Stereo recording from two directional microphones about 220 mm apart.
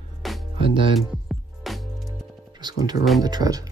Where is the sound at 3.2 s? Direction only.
15° right (ahead or behind).